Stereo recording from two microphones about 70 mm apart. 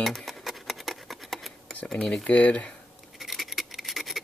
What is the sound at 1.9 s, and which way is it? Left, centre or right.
Speech, centre.